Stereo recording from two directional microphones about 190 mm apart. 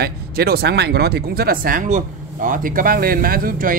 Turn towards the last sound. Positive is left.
turn(degrees=-50)  # may be behind; listen again after turning